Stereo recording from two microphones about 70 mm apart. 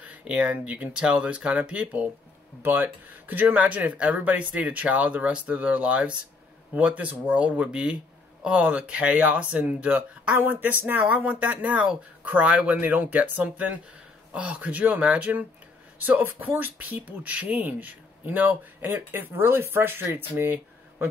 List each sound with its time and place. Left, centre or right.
0.0 s speech: right